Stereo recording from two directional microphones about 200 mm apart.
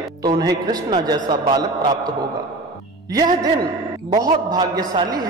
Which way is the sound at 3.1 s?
20° right (ahead or behind).